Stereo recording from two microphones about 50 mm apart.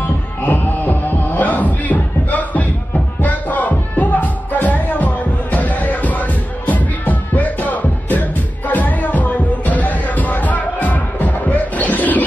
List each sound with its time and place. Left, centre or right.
0.4 s music: left